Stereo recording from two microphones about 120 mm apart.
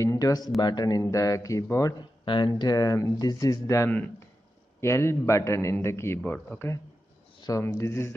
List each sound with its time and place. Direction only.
0.0 s a man's voice: 30° left (ahead or behind)
2.2 s a man's voice: 40° left (ahead or behind); by 6.7 s 15° left (ahead or behind)
7.3 s a sound: 35° left (ahead or behind)
7.6 s a man's voice: 25° left (ahead or behind)